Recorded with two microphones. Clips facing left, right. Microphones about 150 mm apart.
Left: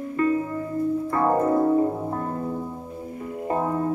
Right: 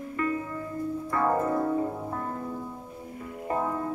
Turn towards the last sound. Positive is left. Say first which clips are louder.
# left 5 dB
turn(degrees=30)  # may be behind; listen again after turning